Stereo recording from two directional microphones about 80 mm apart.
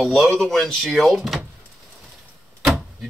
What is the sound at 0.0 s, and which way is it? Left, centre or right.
Speech, centre.